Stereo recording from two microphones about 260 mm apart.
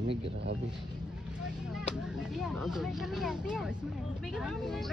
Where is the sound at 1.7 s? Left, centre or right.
Centre.